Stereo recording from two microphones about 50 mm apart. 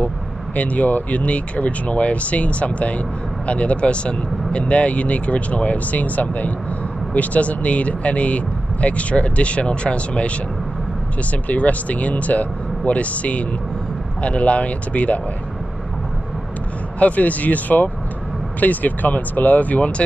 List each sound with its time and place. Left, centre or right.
0.6 s speech: left
11.4 s speech: left
17.0 s speech: left